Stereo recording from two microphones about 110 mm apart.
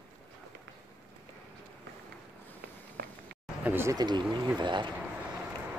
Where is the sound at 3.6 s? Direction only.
20° right (ahead or behind).